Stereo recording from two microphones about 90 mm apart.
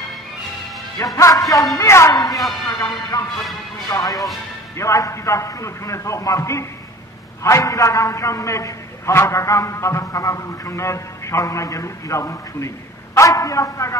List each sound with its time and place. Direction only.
0.9 s a man's voice: 35° left (ahead or behind)
2.1 s a man's voice: 45° left (ahead or behind)